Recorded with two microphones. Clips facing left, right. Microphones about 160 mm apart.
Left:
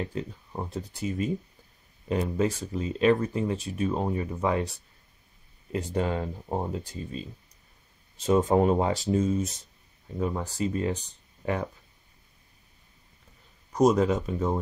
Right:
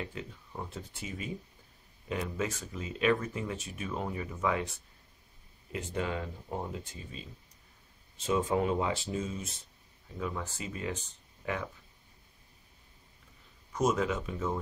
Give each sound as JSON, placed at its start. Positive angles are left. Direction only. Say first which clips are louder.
{"t": 0.0, "sound": "speech", "louder": "left 7 dB", "side_deg": 40}
{"t": 5.7, "sound": "speech", "louder": "left 6 dB", "side_deg": 35}
{"t": 8.3, "sound": "speech", "louder": "left 7 dB", "side_deg": 40}
{"t": 13.7, "sound": "speech", "louder": "left 8 dB", "side_deg": 40}